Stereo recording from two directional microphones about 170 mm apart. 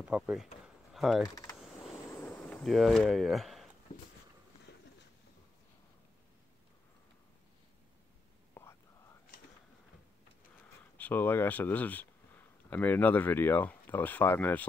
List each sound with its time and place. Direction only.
0.0 s speech: 5° right (ahead or behind)
1.2 s speech: 20° left (ahead or behind)
2.0 s a sound: 15° left (ahead or behind); by 3.6 s centre (ahead or behind)
4.7 s a sound: 85° left
8.6 s whispering: 10° left (ahead or behind)
11.0 s speech: 10° left (ahead or behind)